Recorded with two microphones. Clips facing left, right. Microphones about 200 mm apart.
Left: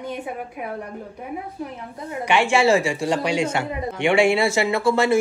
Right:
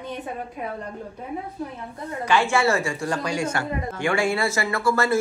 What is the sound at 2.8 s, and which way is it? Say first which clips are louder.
Speech: left 4 dB; 90° left.